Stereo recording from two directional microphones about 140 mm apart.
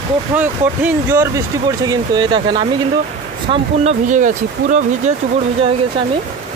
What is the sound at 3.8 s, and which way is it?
Speech, 60° right (ahead or behind).